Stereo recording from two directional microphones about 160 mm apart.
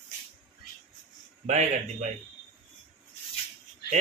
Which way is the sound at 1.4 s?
45° right (ahead or behind).